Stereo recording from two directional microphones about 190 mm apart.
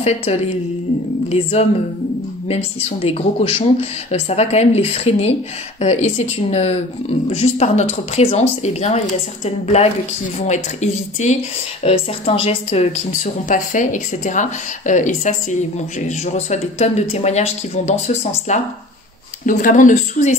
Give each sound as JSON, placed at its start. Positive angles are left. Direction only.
{"t": 0.0, "sound": "speech", "side_deg": 35}